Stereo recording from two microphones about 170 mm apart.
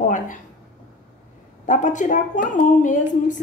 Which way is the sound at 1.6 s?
50° left (ahead or behind).